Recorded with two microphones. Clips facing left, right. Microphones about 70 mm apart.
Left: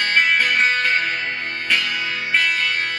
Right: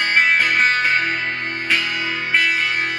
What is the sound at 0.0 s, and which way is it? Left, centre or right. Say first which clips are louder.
Music: right 1 dB; centre.